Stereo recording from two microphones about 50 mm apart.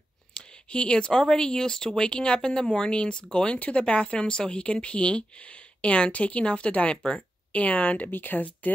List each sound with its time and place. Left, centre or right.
0.3 s speech: centre; by 8.7 s left